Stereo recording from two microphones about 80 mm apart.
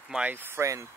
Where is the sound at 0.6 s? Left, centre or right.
Right.